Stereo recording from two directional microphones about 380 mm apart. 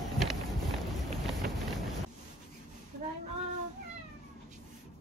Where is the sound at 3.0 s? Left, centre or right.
Centre.